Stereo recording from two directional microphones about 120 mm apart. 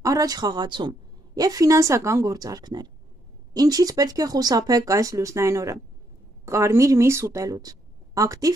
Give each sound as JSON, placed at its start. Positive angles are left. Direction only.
{"t": 0.0, "sound": "a woman's voice", "side_deg": -30}